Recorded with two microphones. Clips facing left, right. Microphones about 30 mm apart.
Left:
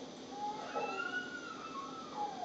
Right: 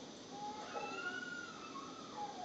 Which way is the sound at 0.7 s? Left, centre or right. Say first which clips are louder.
Left 6 dB; left.